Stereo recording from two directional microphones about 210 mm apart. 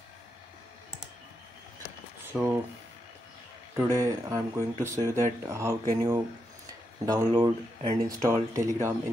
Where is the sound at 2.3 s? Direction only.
10° right (ahead or behind).